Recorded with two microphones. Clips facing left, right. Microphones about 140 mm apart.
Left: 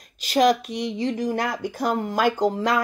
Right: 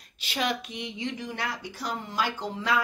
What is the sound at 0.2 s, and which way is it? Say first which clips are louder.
Speech: left 11 dB; 40° left (ahead or behind).